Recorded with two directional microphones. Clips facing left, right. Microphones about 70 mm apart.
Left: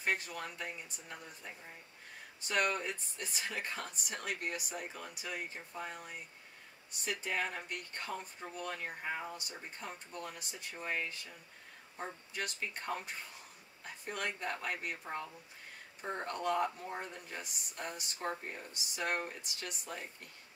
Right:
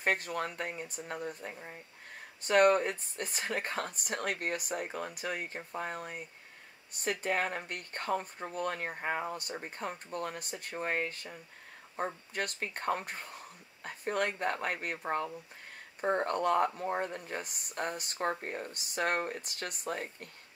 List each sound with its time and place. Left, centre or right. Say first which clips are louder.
0.0 s speech: right 5 dB; right